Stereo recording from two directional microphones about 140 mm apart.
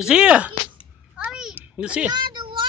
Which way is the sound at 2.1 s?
35° right (ahead or behind).